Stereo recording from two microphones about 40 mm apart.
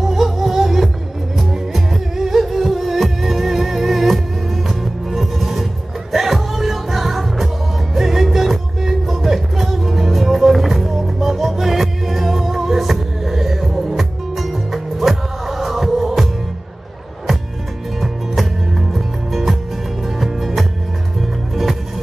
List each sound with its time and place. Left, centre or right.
0.0 s music: centre
18.0 s music: centre